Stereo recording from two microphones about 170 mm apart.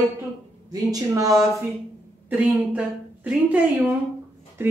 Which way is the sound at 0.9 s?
20° right (ahead or behind).